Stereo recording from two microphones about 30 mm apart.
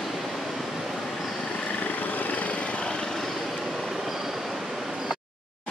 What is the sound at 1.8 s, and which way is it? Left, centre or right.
Vehicle, left.